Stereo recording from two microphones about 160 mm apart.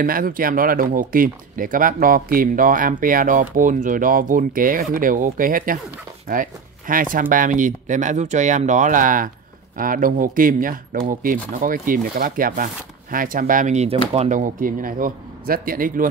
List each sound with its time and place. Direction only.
0.0 s speech: 65° right (ahead or behind); by 14.4 s 40° right (ahead or behind)
14.6 s speech: 60° right (ahead or behind)